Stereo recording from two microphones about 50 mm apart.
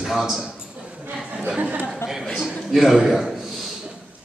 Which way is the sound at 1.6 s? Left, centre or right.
Right.